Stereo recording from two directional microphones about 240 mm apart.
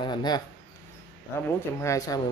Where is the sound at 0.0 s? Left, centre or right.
Centre.